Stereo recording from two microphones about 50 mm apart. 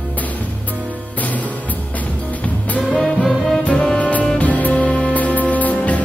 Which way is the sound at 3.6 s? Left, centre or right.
Centre.